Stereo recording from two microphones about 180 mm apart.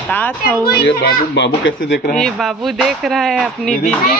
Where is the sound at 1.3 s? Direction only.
80° left.